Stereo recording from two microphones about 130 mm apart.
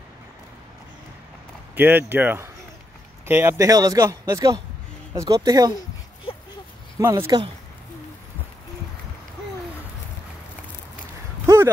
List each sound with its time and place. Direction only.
1.8 s speech: 15° right (ahead or behind); by 5.8 s 30° right (ahead or behind)
7.0 s speech: 20° right (ahead or behind)
11.4 s a sound: 20° right (ahead or behind)